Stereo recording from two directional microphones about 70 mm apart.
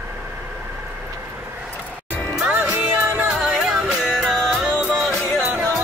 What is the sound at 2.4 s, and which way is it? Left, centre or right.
Music, centre.